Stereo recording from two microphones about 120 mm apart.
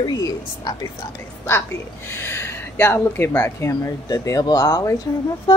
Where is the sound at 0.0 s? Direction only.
30° left (ahead or behind).